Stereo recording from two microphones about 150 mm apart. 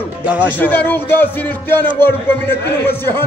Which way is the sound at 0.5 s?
10° left (ahead or behind).